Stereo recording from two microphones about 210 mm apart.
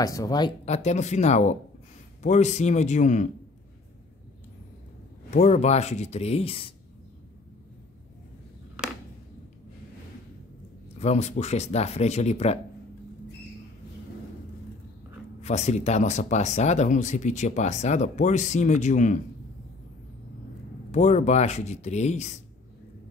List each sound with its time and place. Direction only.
0.0 s speech: 15° left (ahead or behind)
0.7 s speech: 30° left (ahead or behind)
5.3 s speech: 35° left (ahead or behind)
11.0 s speech: 30° left (ahead or behind)
15.4 s speech: 30° left (ahead or behind)
20.9 s speech: 35° left (ahead or behind)